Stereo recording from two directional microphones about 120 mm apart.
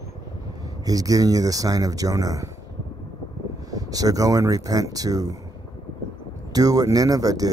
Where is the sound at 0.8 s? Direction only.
30° right (ahead or behind).